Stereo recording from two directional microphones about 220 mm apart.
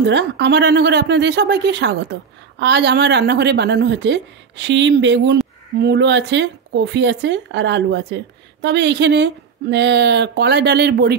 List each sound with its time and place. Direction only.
0.0 s speech: 50° right (ahead or behind)